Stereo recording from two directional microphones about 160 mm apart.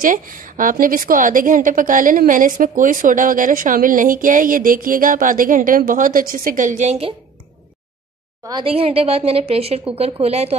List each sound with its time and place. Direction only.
0.0 s a woman's voice: 60° right (ahead or behind); by 7.2 s 40° right (ahead or behind)
8.5 s a woman's voice: 30° right (ahead or behind)